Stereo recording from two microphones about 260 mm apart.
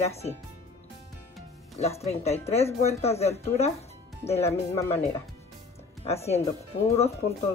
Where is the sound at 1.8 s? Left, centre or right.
Left.